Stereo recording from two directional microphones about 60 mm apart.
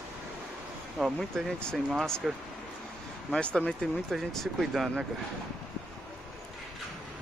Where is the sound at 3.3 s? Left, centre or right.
Centre.